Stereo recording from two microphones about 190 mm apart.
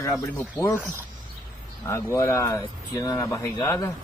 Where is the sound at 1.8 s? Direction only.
15° left (ahead or behind).